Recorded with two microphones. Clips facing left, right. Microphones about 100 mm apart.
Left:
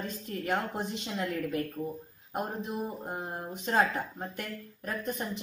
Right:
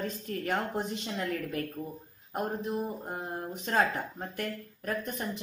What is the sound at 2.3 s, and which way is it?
Speech, 10° left (ahead or behind).